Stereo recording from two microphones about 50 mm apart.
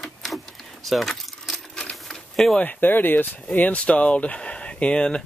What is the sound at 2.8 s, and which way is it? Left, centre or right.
Speech, left.